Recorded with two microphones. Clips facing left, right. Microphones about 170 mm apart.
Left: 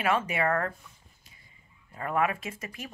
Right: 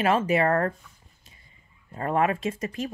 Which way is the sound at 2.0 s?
35° right (ahead or behind).